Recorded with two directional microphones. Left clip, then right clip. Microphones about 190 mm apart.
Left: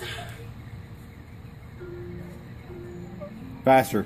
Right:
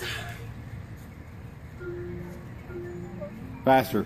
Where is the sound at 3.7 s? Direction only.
50° left (ahead or behind).